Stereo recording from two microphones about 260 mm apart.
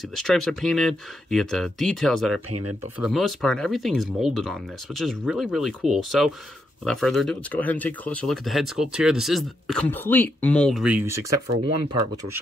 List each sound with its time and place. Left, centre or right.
0.1 s speech: centre
11.6 s speech: centre